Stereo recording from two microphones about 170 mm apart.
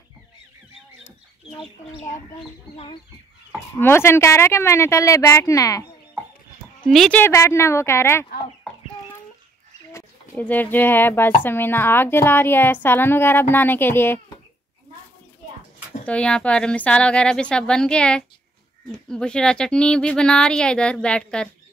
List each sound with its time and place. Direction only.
1.6 s speech: 30° left (ahead or behind)
3.7 s speech: 15° left (ahead or behind)
6.9 s speech: 5° left (ahead or behind)
9.9 s speech: 10° left (ahead or behind)
16.1 s speech: 5° left (ahead or behind)